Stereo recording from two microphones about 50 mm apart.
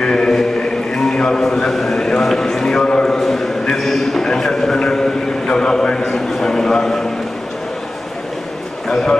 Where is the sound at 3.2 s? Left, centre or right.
Centre.